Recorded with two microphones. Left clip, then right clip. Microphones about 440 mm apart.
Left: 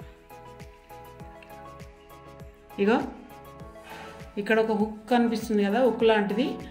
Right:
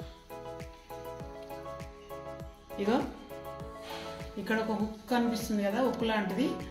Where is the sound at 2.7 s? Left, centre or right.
Left.